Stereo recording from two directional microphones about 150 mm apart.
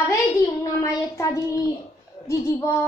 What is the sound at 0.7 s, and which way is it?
A child's voice, 20° left (ahead or behind).